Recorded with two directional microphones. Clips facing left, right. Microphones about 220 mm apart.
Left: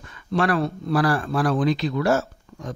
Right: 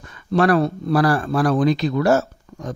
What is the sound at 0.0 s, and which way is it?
Speech, 40° right (ahead or behind).